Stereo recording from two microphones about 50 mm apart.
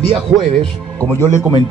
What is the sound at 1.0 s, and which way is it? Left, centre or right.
Speech, right.